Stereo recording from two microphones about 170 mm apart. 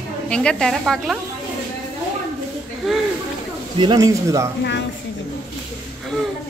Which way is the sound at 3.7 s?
25° right (ahead or behind).